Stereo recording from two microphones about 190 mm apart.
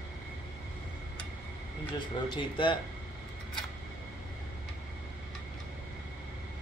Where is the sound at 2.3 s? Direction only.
25° left (ahead or behind).